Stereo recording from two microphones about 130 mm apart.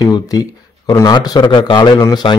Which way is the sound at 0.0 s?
30° left (ahead or behind).